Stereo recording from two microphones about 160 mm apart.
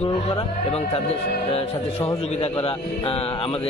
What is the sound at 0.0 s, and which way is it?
Speech, 35° left (ahead or behind).